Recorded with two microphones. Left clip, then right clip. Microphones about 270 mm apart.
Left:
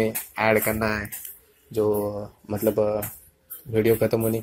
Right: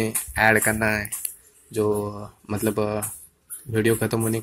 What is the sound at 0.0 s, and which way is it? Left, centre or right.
Speech, right.